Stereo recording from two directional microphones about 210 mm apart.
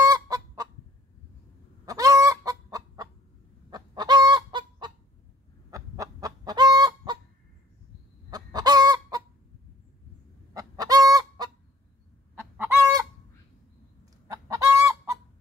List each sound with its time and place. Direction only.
0.0 s chicken: 15° right (ahead or behind)
1.9 s chicken: 15° right (ahead or behind)
3.7 s fowl: 20° right (ahead or behind)
5.7 s chicken: 15° right (ahead or behind)
8.3 s chicken: 20° right (ahead or behind)
10.5 s chicken: 15° right (ahead or behind)
12.5 s chicken: 10° right (ahead or behind)
14.2 s chicken: 15° right (ahead or behind)